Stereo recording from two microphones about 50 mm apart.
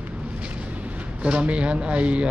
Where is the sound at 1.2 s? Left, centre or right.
Right.